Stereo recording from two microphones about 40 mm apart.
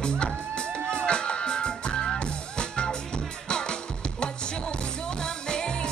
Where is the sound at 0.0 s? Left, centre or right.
Left.